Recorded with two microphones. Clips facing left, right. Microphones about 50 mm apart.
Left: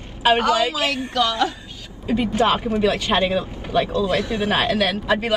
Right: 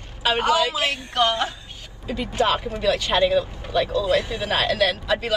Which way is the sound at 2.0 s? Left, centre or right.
Left.